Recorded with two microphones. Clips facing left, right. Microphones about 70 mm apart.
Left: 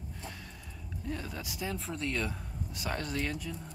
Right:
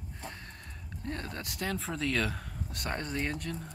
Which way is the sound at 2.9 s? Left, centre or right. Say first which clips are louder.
Right 1 dB; right.